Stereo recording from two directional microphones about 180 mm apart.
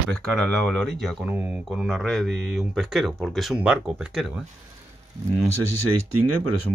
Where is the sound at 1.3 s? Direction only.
10° right (ahead or behind).